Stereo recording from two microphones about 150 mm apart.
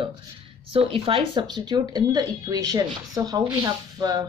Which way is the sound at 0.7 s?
40° right (ahead or behind).